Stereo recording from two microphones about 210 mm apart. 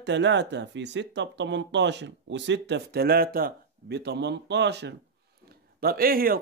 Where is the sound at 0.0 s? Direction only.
55° right (ahead or behind).